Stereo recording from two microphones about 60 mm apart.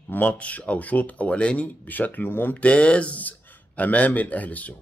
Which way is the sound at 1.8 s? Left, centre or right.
Left.